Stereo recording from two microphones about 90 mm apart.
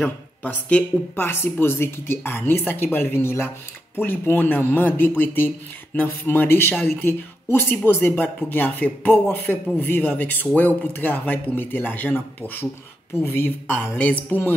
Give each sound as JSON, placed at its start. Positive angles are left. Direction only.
{"t": 0.0, "sound": "a man's voice", "side_deg": 15}